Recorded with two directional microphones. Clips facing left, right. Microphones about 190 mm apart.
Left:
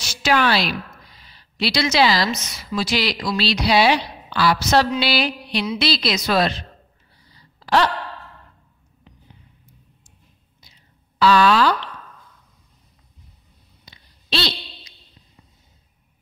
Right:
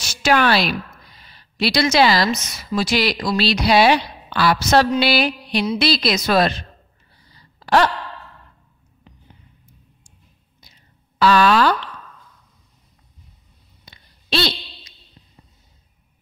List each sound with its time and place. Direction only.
0.0 s a woman's voice: 50° right (ahead or behind)
7.6 s sigh: 50° right (ahead or behind)
11.1 s a woman's voice: 50° right (ahead or behind)
13.8 s a sound: 50° right (ahead or behind)